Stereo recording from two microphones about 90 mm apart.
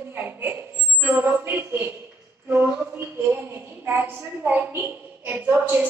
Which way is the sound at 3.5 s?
25° right (ahead or behind).